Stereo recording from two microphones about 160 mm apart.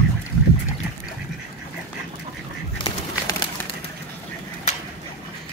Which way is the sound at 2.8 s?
25° left (ahead or behind).